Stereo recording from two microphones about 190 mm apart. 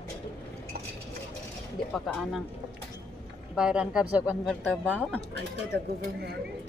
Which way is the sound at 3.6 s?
5° right (ahead or behind).